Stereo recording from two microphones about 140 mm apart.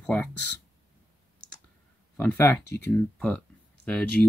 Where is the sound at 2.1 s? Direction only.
10° left (ahead or behind).